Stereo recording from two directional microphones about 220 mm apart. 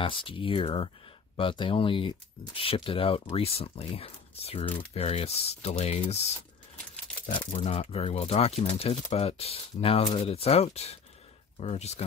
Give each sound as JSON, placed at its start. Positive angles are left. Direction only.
{"t": 0.0, "sound": "speech", "side_deg": 25}
{"t": 7.2, "sound": "speech", "side_deg": 25}